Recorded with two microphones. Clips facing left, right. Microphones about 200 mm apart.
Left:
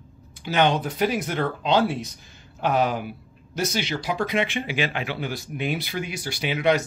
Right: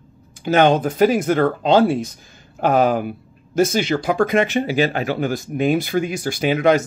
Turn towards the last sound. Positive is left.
turn(degrees=-45)  # may be behind; listen again after turning